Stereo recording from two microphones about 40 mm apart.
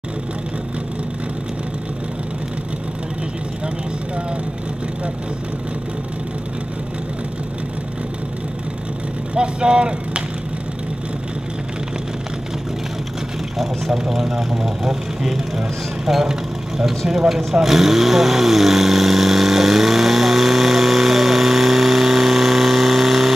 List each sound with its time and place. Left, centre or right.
9.3 s speech: right
13.6 s speech: centre
17.6 s vehicle: centre